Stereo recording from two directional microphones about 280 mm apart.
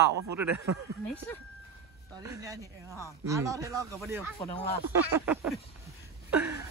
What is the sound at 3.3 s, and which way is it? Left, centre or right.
Speech, centre.